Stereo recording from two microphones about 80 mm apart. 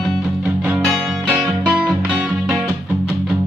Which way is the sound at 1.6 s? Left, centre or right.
Centre.